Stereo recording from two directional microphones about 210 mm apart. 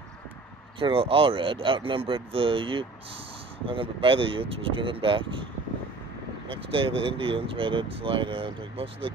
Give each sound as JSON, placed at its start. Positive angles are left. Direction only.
{"t": 0.7, "sound": "speech", "side_deg": -25}